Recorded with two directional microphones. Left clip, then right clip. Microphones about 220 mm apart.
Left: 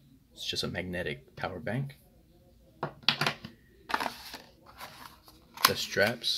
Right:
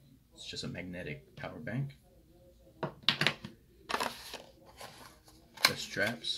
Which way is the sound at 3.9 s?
10° right (ahead or behind).